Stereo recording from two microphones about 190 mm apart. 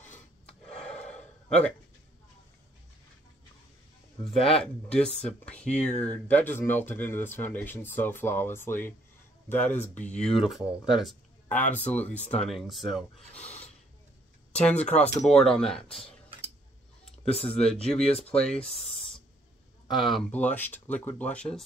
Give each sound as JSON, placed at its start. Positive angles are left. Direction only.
{"t": 0.7, "sound": "a sound", "side_deg": 5}
{"t": 4.6, "sound": "speech", "side_deg": 5}
{"t": 12.2, "sound": "speech", "side_deg": 35}
{"t": 12.6, "sound": "speech", "side_deg": 0}
{"t": 14.5, "sound": "a sound", "side_deg": 5}
{"t": 14.8, "sound": "speech", "side_deg": 35}
{"t": 15.2, "sound": "speech", "side_deg": 5}
{"t": 17.0, "sound": "a sound", "side_deg": 30}
{"t": 17.6, "sound": "speech", "side_deg": 5}